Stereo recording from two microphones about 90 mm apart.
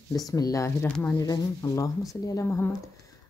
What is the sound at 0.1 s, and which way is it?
Speech, 45° left (ahead or behind).